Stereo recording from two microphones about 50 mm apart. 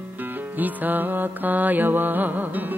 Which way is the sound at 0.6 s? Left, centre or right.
Right.